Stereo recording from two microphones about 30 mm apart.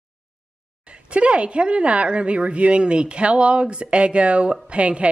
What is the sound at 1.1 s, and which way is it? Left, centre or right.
A woman's voice, right.